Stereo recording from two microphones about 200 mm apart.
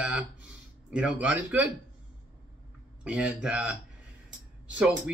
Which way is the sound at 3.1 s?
5° right (ahead or behind).